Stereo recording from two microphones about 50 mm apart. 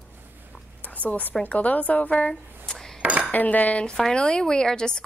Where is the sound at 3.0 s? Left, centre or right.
Right.